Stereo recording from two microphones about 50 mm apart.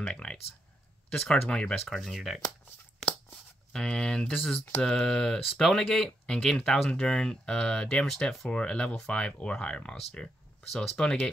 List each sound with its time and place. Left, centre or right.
0.1 s a sound: left
1.1 s speech: centre
1.5 s speech: left
1.9 s speech: centre
3.7 s speech: centre
4.3 s speech: centre
6.0 s speech: centre
10.2 s a sound: centre